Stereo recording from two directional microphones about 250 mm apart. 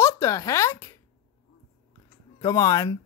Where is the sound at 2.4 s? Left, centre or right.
Centre.